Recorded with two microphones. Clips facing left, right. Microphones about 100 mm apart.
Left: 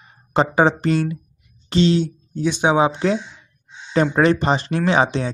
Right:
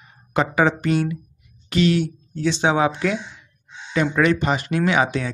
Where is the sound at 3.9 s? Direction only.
35° left (ahead or behind).